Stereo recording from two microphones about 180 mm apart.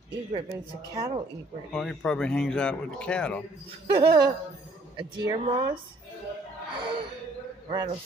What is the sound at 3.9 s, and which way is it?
A woman's voice, 25° right (ahead or behind).